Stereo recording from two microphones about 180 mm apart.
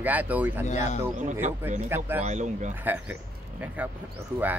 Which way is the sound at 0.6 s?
40° left (ahead or behind).